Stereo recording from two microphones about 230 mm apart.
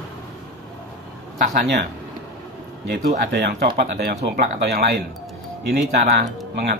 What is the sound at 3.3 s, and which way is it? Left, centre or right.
Speech, right.